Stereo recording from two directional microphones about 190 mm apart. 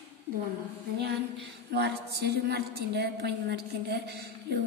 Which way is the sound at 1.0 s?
60° right (ahead or behind).